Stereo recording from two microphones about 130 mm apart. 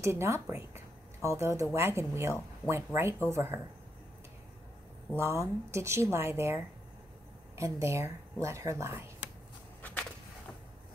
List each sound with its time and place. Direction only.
0.0 s speech: 20° right (ahead or behind)
5.1 s speech: 20° right (ahead or behind)
9.8 s a sound: 10° left (ahead or behind)